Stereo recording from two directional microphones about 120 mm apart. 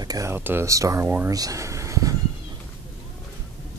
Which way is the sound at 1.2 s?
30° right (ahead or behind).